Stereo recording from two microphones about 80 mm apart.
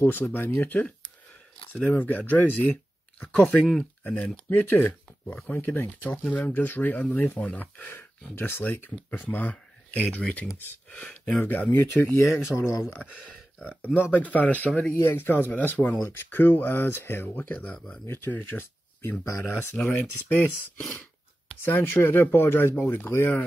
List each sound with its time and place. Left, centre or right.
0.0 s speech: left
12.0 s speech: left
14.1 s speech: left
15.0 s speech: left